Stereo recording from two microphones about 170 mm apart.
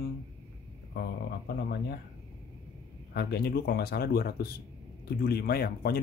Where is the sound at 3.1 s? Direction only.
70° left (ahead or behind).